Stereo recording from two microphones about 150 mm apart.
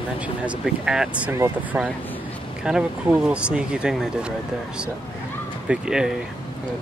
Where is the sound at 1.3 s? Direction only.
20° right (ahead or behind).